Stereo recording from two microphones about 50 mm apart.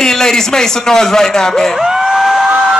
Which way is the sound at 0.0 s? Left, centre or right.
Centre.